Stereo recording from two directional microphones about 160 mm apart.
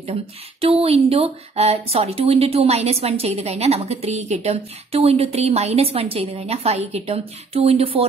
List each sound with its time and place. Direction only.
0.0 s speech: 40° right (ahead or behind)